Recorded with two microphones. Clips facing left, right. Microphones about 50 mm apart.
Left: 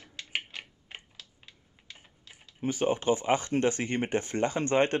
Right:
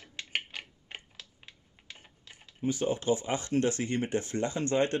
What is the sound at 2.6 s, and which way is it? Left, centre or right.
Speech, left.